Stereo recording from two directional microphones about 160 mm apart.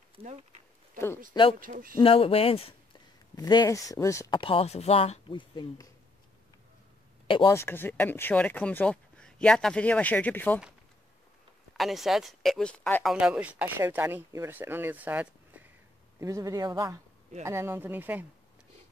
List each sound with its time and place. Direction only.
0.1 s a sound: 45° right (ahead or behind)
0.9 s speech: 15° left (ahead or behind)
1.6 s speech: 60° right (ahead or behind)
2.0 s speech: 35° left (ahead or behind)
3.3 s speech: 25° left (ahead or behind)
4.3 s speech: 35° left (ahead or behind)
7.2 s speech: 30° left (ahead or behind)
7.5 s speech: 15° left (ahead or behind)
11.7 s speech: centre (ahead or behind)